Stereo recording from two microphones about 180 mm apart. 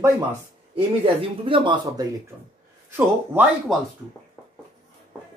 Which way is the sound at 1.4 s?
30° right (ahead or behind).